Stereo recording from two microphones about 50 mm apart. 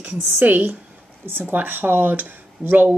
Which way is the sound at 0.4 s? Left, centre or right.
Right.